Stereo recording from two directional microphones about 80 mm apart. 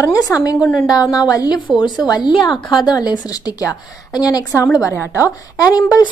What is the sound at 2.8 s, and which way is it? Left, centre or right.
A woman's voice, left.